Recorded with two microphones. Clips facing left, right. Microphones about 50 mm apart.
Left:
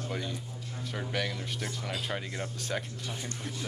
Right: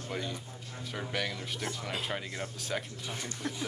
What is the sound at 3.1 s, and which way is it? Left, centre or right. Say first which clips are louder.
Speech: right 1 dB; right.